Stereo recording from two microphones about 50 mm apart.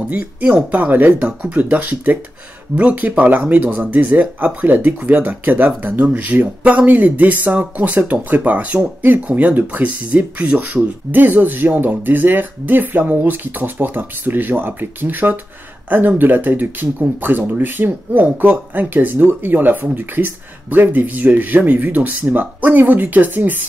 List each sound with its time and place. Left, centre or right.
0.1 s speech: right